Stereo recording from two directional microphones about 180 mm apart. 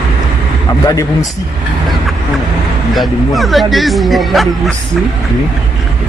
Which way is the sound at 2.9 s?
Centre (ahead or behind).